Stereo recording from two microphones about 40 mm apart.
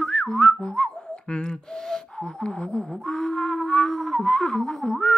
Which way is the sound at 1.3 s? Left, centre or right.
Centre.